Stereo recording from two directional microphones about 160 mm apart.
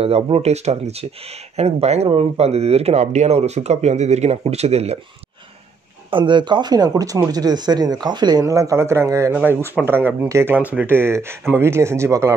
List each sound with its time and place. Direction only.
0.0 s speech: 40° right (ahead or behind)
6.0 s speech: 30° right (ahead or behind)